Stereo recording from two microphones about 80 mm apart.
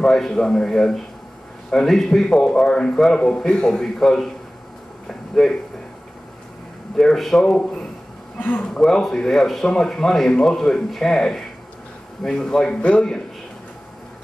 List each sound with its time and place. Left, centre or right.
0.0 s a man's voice: centre
5.0 s a sound: centre
7.0 s a man's voice: centre